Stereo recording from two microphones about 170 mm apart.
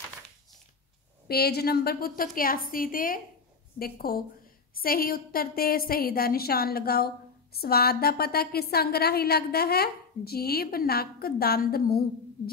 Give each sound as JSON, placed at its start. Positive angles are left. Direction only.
{"t": 1.3, "sound": "a woman's voice", "side_deg": 65}